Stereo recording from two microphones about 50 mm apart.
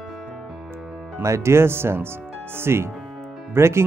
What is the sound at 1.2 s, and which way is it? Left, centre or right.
Speech, right.